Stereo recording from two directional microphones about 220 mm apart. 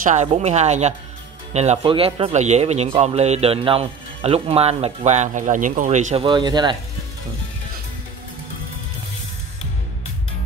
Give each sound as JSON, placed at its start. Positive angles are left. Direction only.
{"t": 0.0, "sound": "speech", "side_deg": -30}